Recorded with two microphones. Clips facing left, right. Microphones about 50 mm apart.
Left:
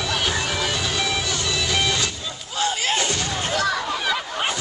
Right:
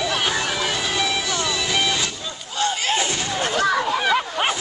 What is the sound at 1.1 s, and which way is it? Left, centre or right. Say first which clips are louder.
Music: right 1 dB; centre.